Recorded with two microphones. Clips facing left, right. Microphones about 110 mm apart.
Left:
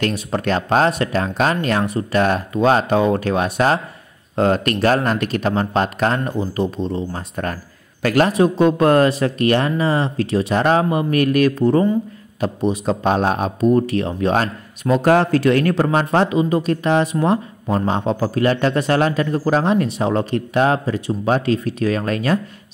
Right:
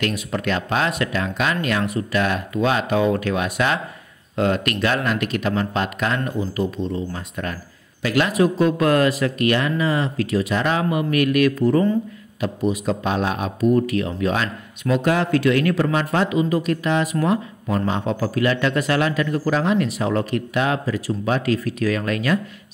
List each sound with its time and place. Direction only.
0.0 s speech: 35° left (ahead or behind)
8.3 s speech: 30° left (ahead or behind)